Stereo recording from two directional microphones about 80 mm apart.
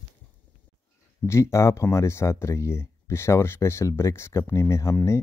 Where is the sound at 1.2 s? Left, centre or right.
Left.